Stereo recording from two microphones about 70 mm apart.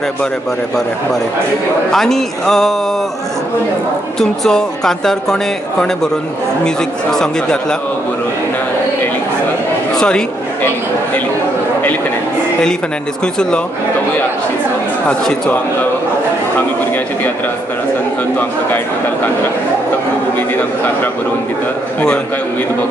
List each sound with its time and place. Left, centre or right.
1.9 s speech: centre
4.2 s speech: centre
9.9 s speech: centre
13.2 s speech: centre
15.0 s speech: centre
20.3 s a man's voice: left